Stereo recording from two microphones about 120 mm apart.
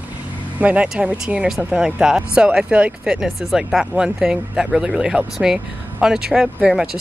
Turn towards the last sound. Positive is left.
turn(degrees=-5)  # may be behind; listen again after turning